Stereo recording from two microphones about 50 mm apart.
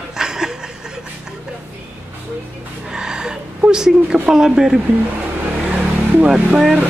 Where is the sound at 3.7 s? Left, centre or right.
Centre.